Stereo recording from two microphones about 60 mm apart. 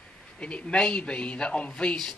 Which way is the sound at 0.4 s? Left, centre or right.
Centre.